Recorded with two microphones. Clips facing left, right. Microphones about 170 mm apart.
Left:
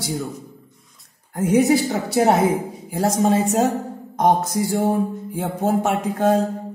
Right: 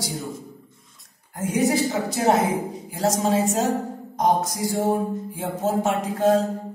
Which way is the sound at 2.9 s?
55° left (ahead or behind).